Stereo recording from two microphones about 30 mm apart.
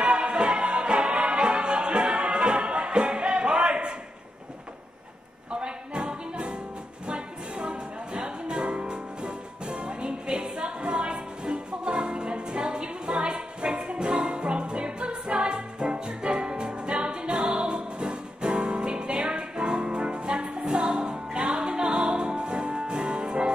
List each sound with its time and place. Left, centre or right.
0.0 s music: right
5.5 s music: right